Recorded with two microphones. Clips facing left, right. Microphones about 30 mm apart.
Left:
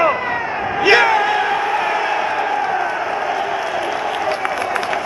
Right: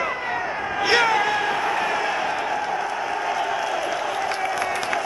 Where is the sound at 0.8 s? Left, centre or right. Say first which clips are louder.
Left 6 dB; centre.